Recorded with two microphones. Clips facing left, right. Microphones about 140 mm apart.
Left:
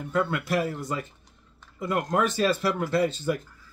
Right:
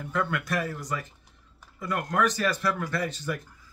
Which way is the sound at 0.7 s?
25° left (ahead or behind).